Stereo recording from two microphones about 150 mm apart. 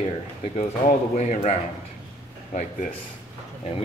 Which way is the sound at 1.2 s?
50° left (ahead or behind).